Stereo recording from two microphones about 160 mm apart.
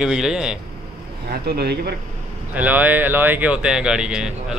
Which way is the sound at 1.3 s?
80° right.